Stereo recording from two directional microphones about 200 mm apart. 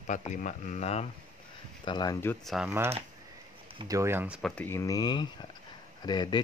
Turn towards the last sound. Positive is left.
turn(degrees=20)  # may be behind; listen again after turning